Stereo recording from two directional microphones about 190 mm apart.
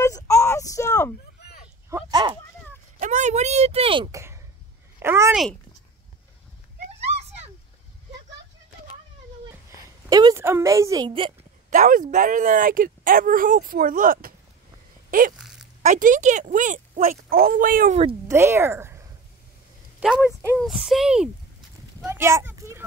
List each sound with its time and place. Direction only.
0.0 s a sound: 15° left (ahead or behind)
1.4 s vehicle: 55° left (ahead or behind)
1.9 s a sound: 15° right (ahead or behind)
3.0 s speech: 40° right (ahead or behind)
5.0 s speech: 15° right (ahead or behind)
5.3 s speech: centre (ahead or behind)
10.0 s a woman's voice: 20° right (ahead or behind)
11.7 s a woman's voice: 45° right (ahead or behind)
15.3 s a sound: 5° right (ahead or behind)
15.8 s a woman's voice: 40° right (ahead or behind)
18.3 s speech: 15° right (ahead or behind)
20.5 s speech: centre (ahead or behind)
22.0 s a sound: 10° right (ahead or behind)